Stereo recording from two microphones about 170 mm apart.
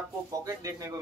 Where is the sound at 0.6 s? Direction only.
20° right (ahead or behind).